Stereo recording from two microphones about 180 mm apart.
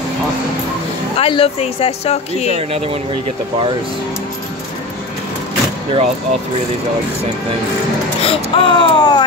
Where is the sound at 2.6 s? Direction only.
35° right (ahead or behind).